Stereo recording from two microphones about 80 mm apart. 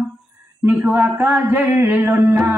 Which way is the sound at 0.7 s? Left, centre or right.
Right.